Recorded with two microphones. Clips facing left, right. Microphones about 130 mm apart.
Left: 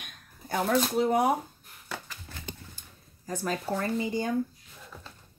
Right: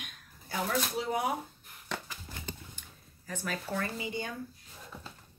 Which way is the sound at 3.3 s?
35° left (ahead or behind).